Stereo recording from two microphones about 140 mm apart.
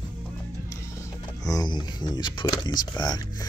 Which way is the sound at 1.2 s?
30° left (ahead or behind).